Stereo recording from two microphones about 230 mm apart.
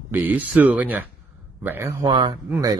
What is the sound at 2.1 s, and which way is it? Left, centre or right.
Speech, right.